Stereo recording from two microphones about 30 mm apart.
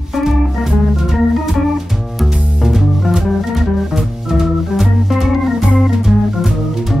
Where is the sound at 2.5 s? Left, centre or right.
Centre.